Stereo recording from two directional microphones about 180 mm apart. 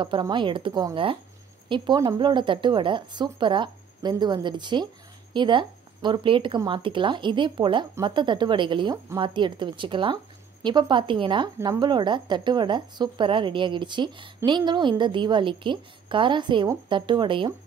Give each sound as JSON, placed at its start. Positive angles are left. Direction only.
{"t": 0.0, "sound": "speech", "side_deg": -25}